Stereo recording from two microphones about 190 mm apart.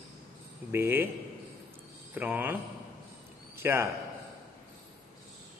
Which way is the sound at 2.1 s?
10° right (ahead or behind).